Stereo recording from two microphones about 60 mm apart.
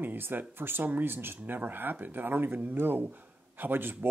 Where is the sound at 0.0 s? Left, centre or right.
Right.